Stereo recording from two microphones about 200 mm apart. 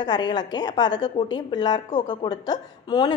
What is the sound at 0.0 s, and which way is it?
A woman's voice, 20° left (ahead or behind).